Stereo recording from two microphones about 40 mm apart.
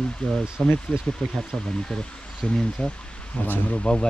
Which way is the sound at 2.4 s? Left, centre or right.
Left.